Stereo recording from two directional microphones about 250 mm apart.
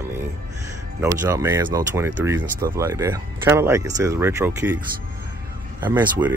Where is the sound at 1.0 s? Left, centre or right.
Centre.